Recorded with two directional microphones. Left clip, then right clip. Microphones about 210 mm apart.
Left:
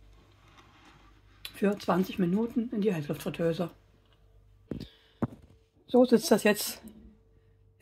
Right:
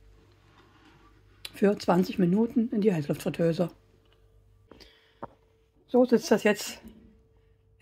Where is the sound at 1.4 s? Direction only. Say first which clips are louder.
Right 4 dB; 40° right (ahead or behind).